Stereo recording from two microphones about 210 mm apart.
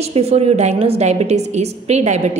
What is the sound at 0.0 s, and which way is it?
A woman's voice, 30° right (ahead or behind).